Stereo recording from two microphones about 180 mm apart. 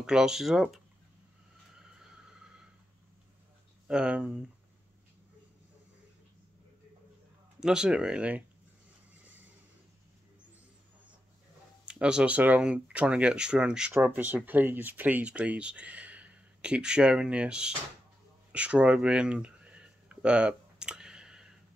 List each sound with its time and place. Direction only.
0.0 s speech: 5° right (ahead or behind)
1.8 s a sound: 5° right (ahead or behind)
3.8 s speech: 5° right (ahead or behind)
7.6 s speech: 5° right (ahead or behind)
11.8 s speech: 5° right (ahead or behind)
18.5 s a sound: 5° right (ahead or behind)